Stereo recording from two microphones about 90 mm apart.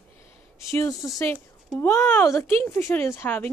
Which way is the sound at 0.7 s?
35° left (ahead or behind).